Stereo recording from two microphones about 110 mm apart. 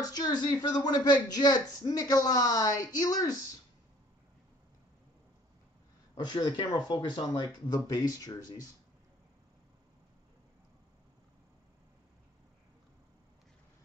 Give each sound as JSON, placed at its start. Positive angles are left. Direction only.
{"t": 0.0, "sound": "speech", "side_deg": 35}
{"t": 6.1, "sound": "speech", "side_deg": 40}